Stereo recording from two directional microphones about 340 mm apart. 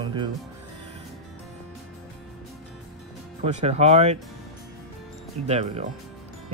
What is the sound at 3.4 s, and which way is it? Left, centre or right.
Speech, centre.